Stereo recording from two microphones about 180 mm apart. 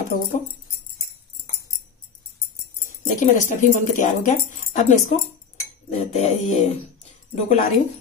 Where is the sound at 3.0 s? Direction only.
45° left (ahead or behind).